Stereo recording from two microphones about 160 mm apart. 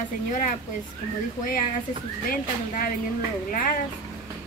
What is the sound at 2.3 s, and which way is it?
Speech, 65° left (ahead or behind).